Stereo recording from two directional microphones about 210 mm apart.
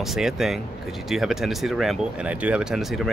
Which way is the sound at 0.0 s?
Centre (ahead or behind).